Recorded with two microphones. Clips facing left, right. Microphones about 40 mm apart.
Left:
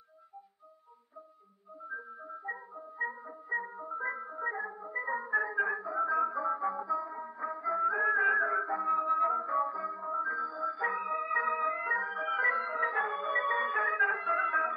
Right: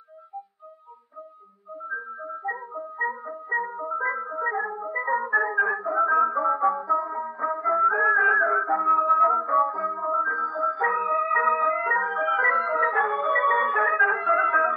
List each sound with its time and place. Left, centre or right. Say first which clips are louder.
1.9 s music: right 9 dB; right